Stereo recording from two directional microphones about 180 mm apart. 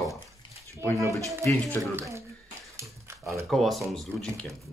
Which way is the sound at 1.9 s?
15° right (ahead or behind).